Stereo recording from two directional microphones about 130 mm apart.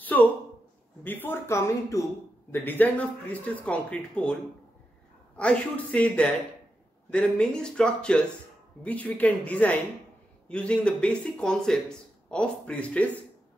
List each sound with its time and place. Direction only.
0.0 s a sound: 15° left (ahead or behind)
1.0 s speech: 15° left (ahead or behind)
5.4 s speech: 10° left (ahead or behind)